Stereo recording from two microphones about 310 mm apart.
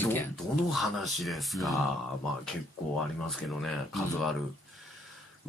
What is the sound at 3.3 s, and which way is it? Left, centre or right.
Speech, centre.